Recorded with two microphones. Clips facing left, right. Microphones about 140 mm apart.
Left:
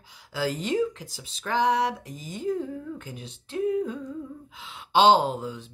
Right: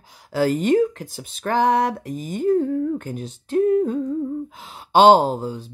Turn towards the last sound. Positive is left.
turn(degrees=-35)  # may be behind; listen again after turning